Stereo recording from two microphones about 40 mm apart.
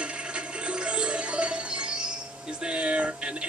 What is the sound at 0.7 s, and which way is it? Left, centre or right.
Music, right.